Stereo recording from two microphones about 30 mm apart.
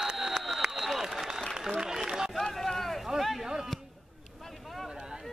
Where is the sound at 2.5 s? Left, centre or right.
Centre.